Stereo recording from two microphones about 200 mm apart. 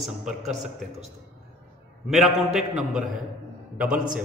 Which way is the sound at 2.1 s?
Centre (ahead or behind).